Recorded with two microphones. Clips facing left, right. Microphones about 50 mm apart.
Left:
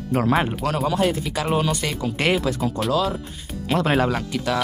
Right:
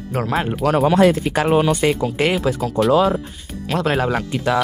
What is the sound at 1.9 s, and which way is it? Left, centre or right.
Speech, centre.